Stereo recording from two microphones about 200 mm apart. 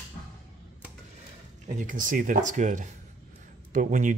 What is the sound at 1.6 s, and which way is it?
Speech, 40° right (ahead or behind).